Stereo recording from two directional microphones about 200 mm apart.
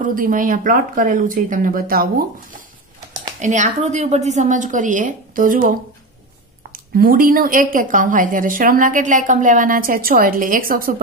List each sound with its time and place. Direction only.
0.0 s a woman's voice: 45° right (ahead or behind)
6.7 s a woman's voice: 45° right (ahead or behind)